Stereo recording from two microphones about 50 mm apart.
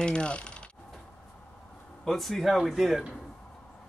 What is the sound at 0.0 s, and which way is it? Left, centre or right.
Coin, centre.